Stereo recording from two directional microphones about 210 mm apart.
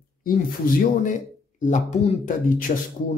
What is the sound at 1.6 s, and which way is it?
Speech, 35° left (ahead or behind).